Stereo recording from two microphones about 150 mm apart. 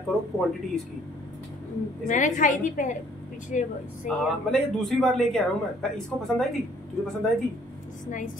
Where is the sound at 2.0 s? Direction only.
55° left (ahead or behind).